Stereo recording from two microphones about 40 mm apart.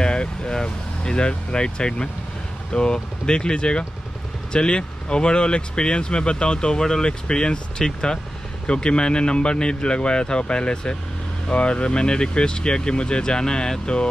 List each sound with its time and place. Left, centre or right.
0.0 s vehicle: left
0.6 s speech: left